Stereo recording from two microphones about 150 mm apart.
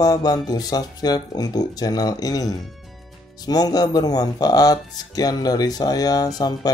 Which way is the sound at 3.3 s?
25° left (ahead or behind).